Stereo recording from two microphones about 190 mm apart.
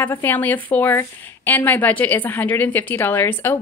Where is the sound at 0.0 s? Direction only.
10° left (ahead or behind).